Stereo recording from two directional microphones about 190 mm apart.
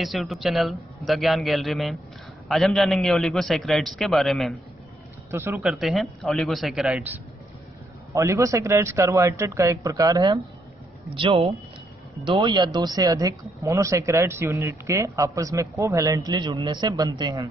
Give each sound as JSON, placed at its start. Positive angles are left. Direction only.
{"t": 0.0, "sound": "a man's voice", "side_deg": 0}
{"t": 5.3, "sound": "speech", "side_deg": -10}
{"t": 5.6, "sound": "a man's voice", "side_deg": 0}